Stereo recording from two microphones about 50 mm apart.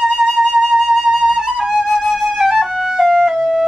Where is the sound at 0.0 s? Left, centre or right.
Centre.